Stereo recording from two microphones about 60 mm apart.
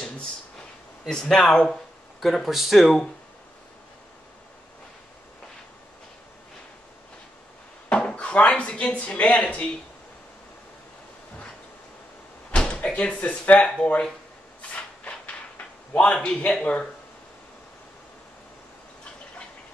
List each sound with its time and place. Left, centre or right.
1.0 s speech: centre
2.1 s speech: centre
7.9 s a sound: centre
12.4 s door: centre
13.7 s speech: centre
14.7 s a sound: centre
15.5 s speech: left